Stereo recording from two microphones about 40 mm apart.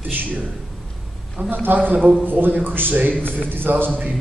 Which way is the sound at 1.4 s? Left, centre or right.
Right.